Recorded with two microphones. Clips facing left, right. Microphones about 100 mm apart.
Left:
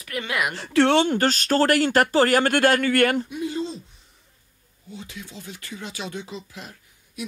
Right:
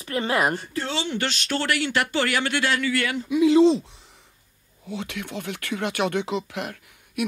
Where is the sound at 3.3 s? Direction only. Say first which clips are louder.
Right 12 dB; 90° right.